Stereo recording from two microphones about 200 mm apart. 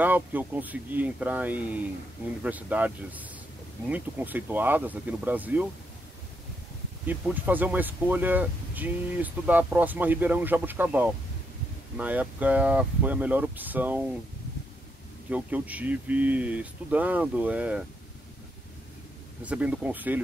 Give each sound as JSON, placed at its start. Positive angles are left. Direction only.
{"t": 0.0, "sound": "speech", "side_deg": -10}
{"t": 7.1, "sound": "speech", "side_deg": -10}
{"t": 15.2, "sound": "speech", "side_deg": -5}
{"t": 19.4, "sound": "speech", "side_deg": -5}